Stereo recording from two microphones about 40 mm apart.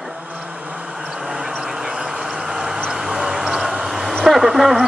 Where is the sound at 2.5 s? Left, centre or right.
Centre.